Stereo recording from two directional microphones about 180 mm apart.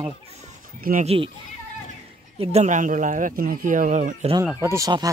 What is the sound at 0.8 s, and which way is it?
Speech, 50° right (ahead or behind).